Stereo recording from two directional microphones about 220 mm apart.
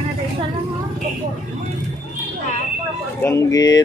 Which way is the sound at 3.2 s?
10° left (ahead or behind).